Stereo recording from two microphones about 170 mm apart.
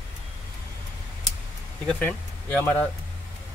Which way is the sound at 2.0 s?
10° left (ahead or behind).